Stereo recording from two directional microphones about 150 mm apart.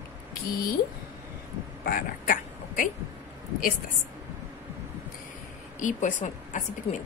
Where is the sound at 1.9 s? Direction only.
70° left (ahead or behind).